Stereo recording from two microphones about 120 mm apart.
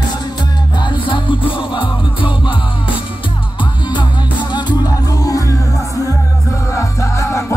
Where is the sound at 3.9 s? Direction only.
40° left (ahead or behind).